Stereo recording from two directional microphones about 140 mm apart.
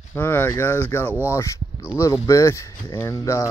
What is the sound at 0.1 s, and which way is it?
Speech, 15° left (ahead or behind).